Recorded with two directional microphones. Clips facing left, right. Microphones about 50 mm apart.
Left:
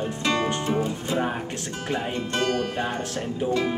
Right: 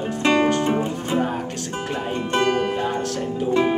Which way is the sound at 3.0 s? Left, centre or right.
Centre.